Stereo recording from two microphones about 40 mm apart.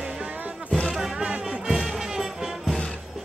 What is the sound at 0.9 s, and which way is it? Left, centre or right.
Music, centre.